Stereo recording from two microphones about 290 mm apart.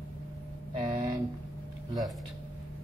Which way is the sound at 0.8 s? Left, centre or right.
Centre.